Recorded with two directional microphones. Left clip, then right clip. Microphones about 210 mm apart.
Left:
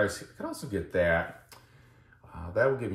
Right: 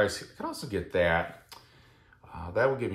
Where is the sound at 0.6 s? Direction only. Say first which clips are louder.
Even; 10° right (ahead or behind).